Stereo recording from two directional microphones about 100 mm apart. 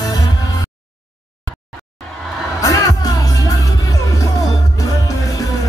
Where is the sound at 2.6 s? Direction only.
35° left (ahead or behind).